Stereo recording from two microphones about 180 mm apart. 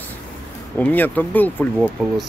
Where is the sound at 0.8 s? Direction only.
10° left (ahead or behind).